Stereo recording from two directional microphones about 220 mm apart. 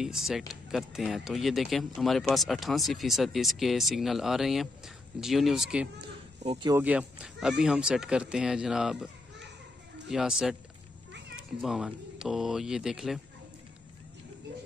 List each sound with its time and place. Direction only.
0.0 s speech: centre (ahead or behind)
6.4 s speech: 20° right (ahead or behind)
6.8 s speech: 5° right (ahead or behind)